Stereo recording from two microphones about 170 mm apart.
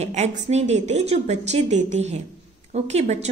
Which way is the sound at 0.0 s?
40° right (ahead or behind).